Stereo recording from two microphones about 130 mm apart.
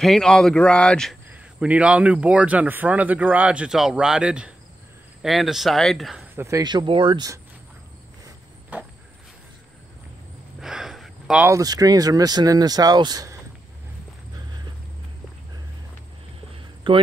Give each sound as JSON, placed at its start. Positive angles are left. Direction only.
{"t": 0.0, "sound": "speech", "side_deg": 5}
{"t": 1.3, "sound": "speech", "side_deg": -10}
{"t": 6.3, "sound": "speech", "side_deg": -20}
{"t": 6.6, "sound": "speech", "side_deg": -35}
{"t": 10.6, "sound": "a sound", "side_deg": -5}
{"t": 11.4, "sound": "speech", "side_deg": -25}
{"t": 16.9, "sound": "speech", "side_deg": -40}